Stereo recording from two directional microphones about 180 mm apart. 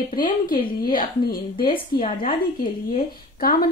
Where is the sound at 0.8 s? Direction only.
50° left (ahead or behind).